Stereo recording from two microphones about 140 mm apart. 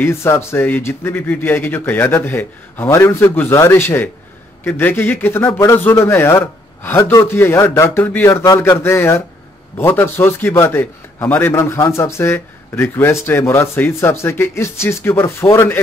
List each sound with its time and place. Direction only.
0.0 s a man's voice: 15° left (ahead or behind)